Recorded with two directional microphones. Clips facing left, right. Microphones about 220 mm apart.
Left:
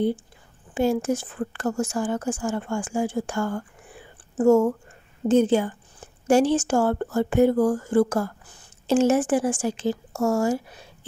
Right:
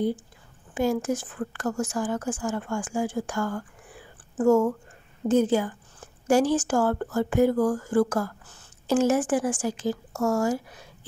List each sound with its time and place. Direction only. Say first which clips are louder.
0.7 s speech: left 3 dB; 25° left (ahead or behind)